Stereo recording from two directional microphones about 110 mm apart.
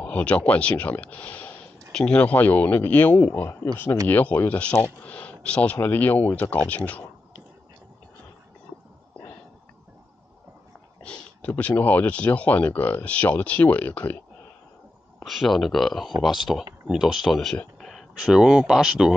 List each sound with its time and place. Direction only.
0.0 s speech: 10° left (ahead or behind)
11.0 s speech: 10° left (ahead or behind)
15.2 s speech: centre (ahead or behind)